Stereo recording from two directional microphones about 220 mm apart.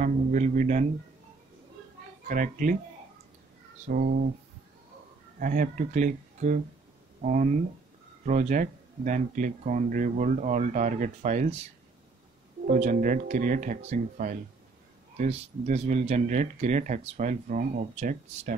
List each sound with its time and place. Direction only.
0.0 s speech: 35° right (ahead or behind)
2.2 s speech: 35° right (ahead or behind)
3.8 s speech: 40° right (ahead or behind)
5.4 s speech: 35° right (ahead or behind)
12.6 s speech: 35° right (ahead or behind)